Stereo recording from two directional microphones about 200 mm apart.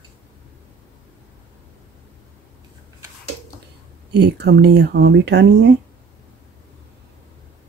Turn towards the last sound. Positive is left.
turn(degrees=-60)  # may be behind; listen again after turning